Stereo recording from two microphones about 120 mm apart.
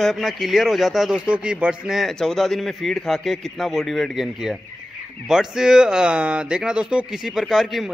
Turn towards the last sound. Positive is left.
turn(degrees=0)  # may be behind; listen again after turning